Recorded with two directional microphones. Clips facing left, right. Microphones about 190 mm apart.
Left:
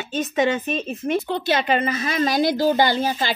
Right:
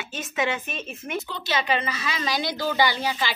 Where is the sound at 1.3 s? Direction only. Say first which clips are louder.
Left 2 dB; 55° left (ahead or behind).